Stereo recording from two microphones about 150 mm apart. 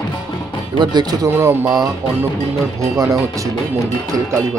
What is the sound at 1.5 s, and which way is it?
Speech, 15° right (ahead or behind).